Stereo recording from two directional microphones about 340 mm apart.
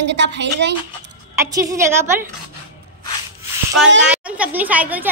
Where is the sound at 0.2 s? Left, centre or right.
Right.